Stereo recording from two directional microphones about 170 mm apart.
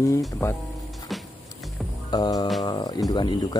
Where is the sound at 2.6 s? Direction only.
25° left (ahead or behind).